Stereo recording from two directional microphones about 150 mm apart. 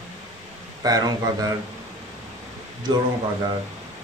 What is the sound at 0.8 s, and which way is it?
Speech, 25° right (ahead or behind).